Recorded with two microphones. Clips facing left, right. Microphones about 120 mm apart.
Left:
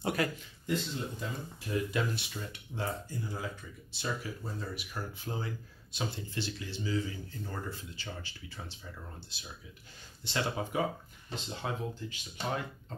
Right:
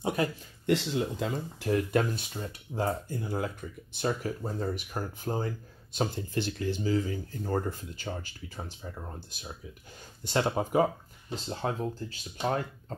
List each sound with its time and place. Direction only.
0.0 s speech: 25° right (ahead or behind)
0.7 s speech: 90° right; by 2.0 s 70° right (ahead or behind)
2.0 s speech: 40° right (ahead or behind)
3.1 s speech: 55° right (ahead or behind); by 12.2 s 40° right (ahead or behind)